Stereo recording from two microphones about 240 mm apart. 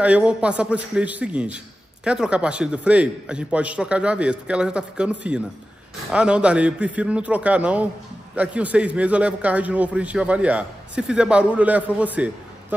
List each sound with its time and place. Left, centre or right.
0.0 s a man's voice: centre